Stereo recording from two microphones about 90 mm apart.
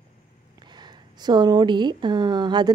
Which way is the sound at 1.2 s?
50° right (ahead or behind).